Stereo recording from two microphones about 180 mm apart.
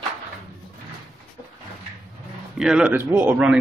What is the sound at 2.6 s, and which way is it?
A man's voice, 5° right (ahead or behind).